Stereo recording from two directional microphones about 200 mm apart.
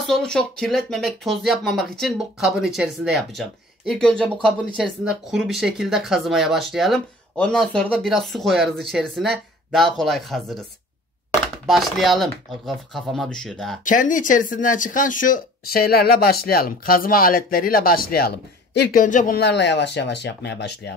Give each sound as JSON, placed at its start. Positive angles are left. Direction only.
{"t": 0.0, "sound": "speech", "side_deg": 5}
{"t": 11.6, "sound": "speech", "side_deg": 0}
{"t": 13.8, "sound": "speech", "side_deg": 40}